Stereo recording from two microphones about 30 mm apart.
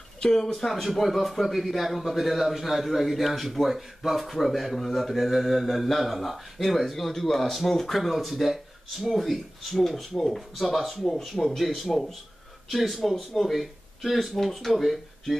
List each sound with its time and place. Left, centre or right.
0.2 s speech: left
0.7 s a man's voice: centre
8.0 s a man's voice: centre
11.1 s a man's voice: centre